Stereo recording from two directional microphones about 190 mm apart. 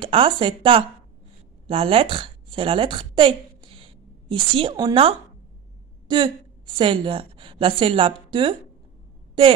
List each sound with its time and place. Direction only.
0.0 s a woman's voice: 25° right (ahead or behind)